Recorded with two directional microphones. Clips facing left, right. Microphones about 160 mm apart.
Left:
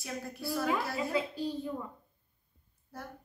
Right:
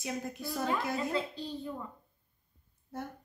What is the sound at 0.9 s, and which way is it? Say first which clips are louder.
Speech: even; 10° left (ahead or behind).